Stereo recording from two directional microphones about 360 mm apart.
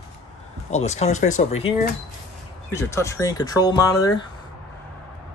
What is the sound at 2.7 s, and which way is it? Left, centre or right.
Speech, centre.